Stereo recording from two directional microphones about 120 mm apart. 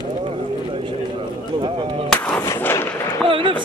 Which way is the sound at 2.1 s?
10° left (ahead or behind).